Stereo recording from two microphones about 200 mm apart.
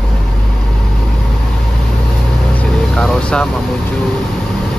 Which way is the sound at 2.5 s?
5° left (ahead or behind).